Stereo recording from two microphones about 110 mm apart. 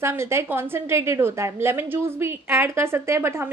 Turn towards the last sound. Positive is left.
turn(degrees=-20)  # may be behind; listen again after turning